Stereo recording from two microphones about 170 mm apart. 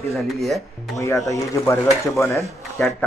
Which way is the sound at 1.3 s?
15° left (ahead or behind).